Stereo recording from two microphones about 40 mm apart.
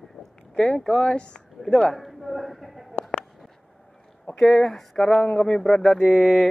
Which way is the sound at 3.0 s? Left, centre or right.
Left.